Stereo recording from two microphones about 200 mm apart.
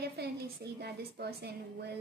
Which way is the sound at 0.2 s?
55° right (ahead or behind).